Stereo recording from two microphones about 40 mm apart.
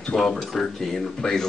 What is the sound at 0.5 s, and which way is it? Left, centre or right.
Speech, centre.